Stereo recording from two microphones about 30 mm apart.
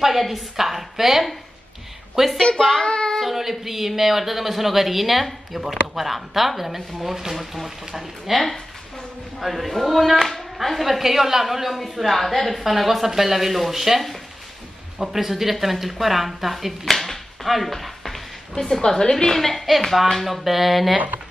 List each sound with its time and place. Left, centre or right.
0.0 s speech: centre
2.4 s a woman's voice: left
2.8 s child singing: left
3.3 s speech: centre
15.1 s speech: centre
16.9 s a sound: centre
18.9 s a woman's voice: left
19.3 s a woman's voice: centre
20.2 s speech: centre